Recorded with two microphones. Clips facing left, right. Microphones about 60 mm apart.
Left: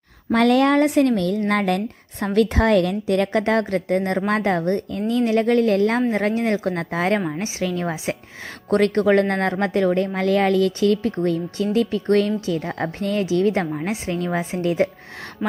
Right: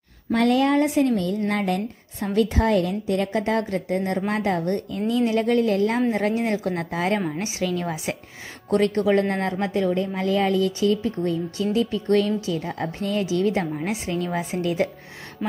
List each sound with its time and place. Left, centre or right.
0.4 s a woman's voice: left
8.6 s speech: left
12.3 s a woman's voice: left
13.7 s a woman's voice: left